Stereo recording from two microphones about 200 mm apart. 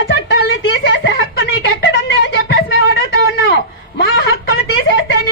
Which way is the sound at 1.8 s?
65° left (ahead or behind).